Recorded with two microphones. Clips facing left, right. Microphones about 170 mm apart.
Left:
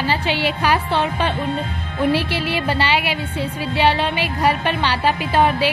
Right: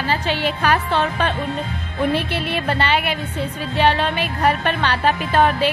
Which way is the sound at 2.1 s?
55° right (ahead or behind).